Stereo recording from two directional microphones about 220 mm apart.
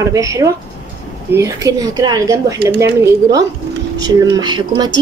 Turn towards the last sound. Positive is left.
turn(degrees=-20)  # may be behind; listen again after turning